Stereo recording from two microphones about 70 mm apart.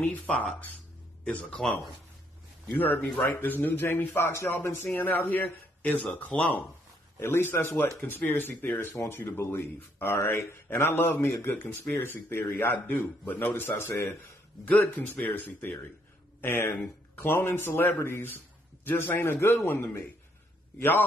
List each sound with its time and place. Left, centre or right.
0.0 s speech: left
2.8 s a man's voice: left
7.2 s a man's voice: left
14.6 s a man's voice: left